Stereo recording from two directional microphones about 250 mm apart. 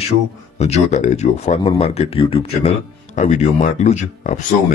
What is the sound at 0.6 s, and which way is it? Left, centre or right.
Speech, left.